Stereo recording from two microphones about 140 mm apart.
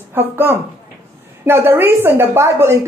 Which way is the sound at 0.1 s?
15° right (ahead or behind).